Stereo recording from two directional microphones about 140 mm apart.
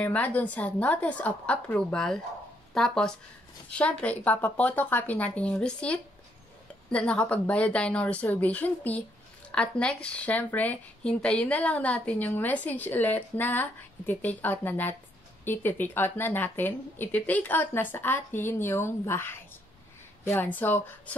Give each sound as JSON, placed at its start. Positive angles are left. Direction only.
{"t": 0.0, "sound": "speech", "side_deg": 10}